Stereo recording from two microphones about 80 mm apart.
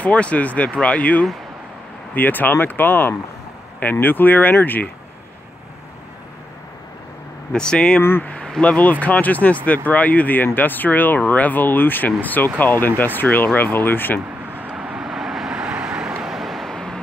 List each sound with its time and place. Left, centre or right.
0.0 s speech: centre
7.5 s speech: centre
8.0 s speech: left
8.3 s speech: centre
14.5 s vehicle: right
14.8 s vehicle: centre